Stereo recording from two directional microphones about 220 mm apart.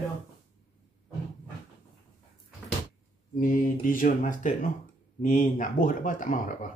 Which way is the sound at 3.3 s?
40° left (ahead or behind).